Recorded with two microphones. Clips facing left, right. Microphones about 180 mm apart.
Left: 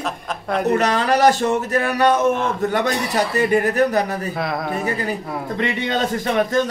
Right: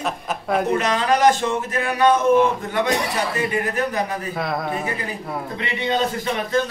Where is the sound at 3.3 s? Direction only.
40° left (ahead or behind).